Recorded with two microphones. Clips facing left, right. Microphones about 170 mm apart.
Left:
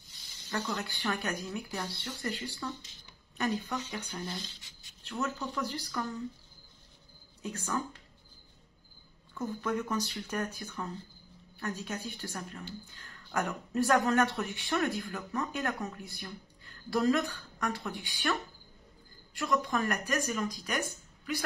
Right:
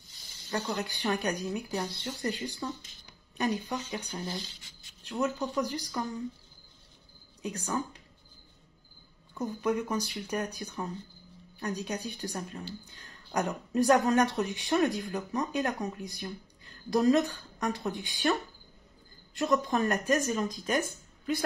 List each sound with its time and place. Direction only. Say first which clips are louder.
0.5 s speech: right 2 dB; 30° right (ahead or behind)
0.8 s speech: right 4 dB; 20° right (ahead or behind)
7.4 s speech: right 2 dB; 15° right (ahead or behind)
9.3 s speech: right 3 dB; 15° right (ahead or behind)
13.0 s a sound: right 2 dB; 15° right (ahead or behind)
13.7 s a woman's voice: right 3 dB; 15° right (ahead or behind)